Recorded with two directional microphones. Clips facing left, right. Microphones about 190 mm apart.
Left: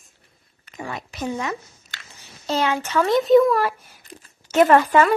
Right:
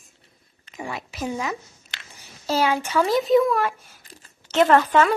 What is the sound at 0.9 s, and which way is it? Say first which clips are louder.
A child's voice: left 1 dB; centre (ahead or behind).